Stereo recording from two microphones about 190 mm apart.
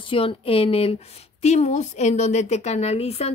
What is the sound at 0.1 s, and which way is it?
A woman's voice, 30° left (ahead or behind).